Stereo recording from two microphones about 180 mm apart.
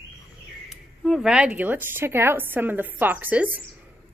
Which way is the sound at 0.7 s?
Centre (ahead or behind).